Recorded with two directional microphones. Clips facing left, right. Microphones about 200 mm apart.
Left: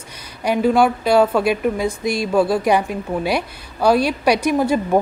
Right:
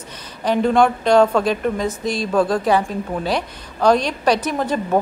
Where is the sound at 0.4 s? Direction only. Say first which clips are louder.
Even; 10° left (ahead or behind).